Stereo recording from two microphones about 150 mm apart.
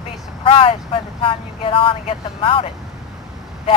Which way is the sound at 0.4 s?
35° left (ahead or behind).